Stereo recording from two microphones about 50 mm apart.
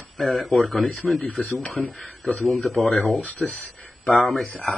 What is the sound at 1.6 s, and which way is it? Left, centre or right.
Speech, left.